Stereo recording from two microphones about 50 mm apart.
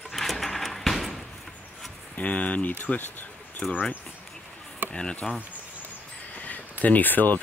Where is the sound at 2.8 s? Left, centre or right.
Left.